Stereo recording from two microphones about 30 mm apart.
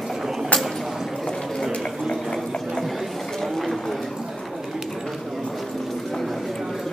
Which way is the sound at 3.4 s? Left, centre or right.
Centre.